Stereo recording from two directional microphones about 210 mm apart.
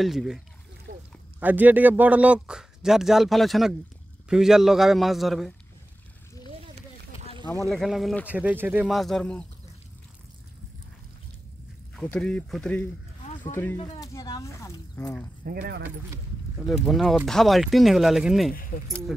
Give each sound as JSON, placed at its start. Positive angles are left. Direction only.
{"t": 0.0, "sound": "a man's voice", "side_deg": 0}
{"t": 0.9, "sound": "a sound", "side_deg": -40}
{"t": 1.4, "sound": "a man's voice", "side_deg": -10}
{"t": 7.7, "sound": "a man's voice", "side_deg": 0}
{"t": 11.9, "sound": "a man's voice", "side_deg": 5}
{"t": 13.7, "sound": "speech", "side_deg": 20}
{"t": 15.4, "sound": "speech", "side_deg": -45}
{"t": 16.8, "sound": "a man's voice", "side_deg": 0}
{"t": 18.5, "sound": "speech", "side_deg": 40}